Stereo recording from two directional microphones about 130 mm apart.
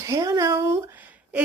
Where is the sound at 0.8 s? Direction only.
15° right (ahead or behind).